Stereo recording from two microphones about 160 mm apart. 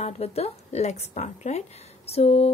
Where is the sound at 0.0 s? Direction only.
40° left (ahead or behind).